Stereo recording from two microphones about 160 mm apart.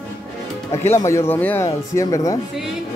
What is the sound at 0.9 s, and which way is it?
Speech, 15° left (ahead or behind).